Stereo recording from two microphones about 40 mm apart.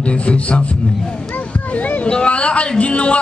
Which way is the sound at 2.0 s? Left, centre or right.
Left.